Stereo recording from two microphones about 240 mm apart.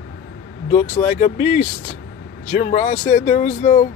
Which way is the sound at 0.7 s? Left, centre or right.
Left.